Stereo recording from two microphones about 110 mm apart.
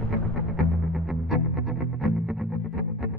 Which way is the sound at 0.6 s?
Centre (ahead or behind).